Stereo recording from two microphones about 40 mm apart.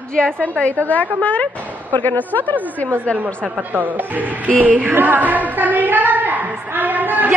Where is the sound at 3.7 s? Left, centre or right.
Right.